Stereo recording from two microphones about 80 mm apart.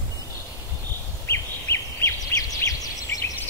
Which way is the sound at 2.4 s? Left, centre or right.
Left.